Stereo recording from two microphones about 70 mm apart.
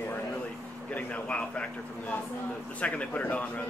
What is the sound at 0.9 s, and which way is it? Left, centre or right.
Speech, centre.